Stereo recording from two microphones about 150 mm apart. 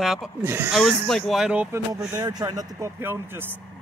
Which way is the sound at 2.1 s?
25° right (ahead or behind).